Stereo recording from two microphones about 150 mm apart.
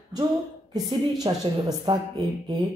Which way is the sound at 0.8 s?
25° right (ahead or behind).